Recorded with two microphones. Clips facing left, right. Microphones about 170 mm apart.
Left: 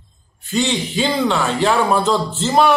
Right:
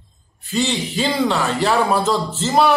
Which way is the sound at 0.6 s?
Centre (ahead or behind).